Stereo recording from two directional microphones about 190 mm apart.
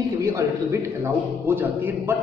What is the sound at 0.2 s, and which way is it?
A man's voice, 15° right (ahead or behind).